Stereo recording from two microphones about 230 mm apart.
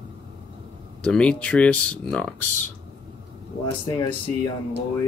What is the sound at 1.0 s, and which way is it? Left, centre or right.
Speech, centre.